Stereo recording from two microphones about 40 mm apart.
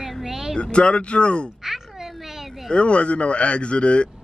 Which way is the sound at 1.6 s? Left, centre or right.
Centre.